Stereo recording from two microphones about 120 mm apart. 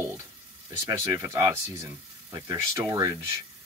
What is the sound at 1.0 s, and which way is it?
Speech, 25° right (ahead or behind).